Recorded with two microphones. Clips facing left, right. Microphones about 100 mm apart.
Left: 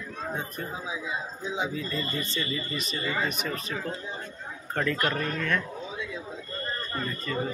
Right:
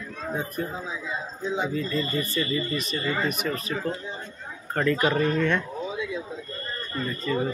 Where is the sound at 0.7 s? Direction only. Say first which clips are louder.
Right 1 dB; 10° left (ahead or behind); by 5.2 s 10° right (ahead or behind).